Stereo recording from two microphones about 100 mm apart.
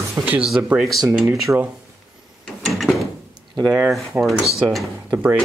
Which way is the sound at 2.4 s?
Centre (ahead or behind).